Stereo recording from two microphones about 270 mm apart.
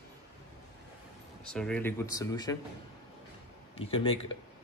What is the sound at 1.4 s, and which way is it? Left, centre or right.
Speech, centre.